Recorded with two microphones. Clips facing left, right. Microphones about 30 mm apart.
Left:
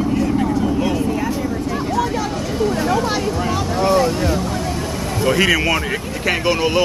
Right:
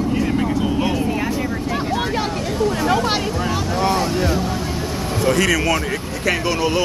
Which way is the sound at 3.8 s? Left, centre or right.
Centre.